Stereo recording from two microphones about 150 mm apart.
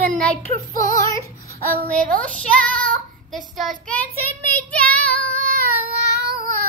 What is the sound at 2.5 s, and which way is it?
Child singing, 10° left (ahead or behind).